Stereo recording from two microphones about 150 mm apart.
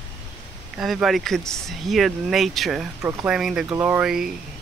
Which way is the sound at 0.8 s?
Centre (ahead or behind).